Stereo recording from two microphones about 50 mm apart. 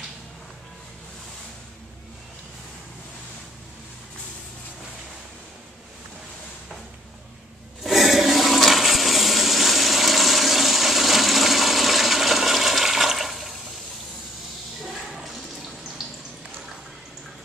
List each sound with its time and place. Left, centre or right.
7.8 s toilet flush: centre
14.9 s toilet flush: centre
16.0 s a sound: centre